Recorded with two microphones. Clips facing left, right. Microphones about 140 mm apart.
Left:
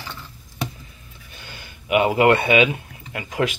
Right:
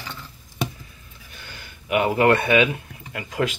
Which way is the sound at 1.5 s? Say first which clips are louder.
Left 3 dB; 20° left (ahead or behind).